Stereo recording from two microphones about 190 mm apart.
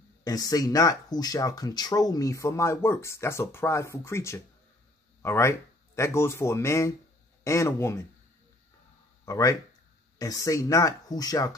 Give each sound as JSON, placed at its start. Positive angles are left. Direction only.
{"t": 0.2, "sound": "speech", "side_deg": 20}
{"t": 9.2, "sound": "speech", "side_deg": 15}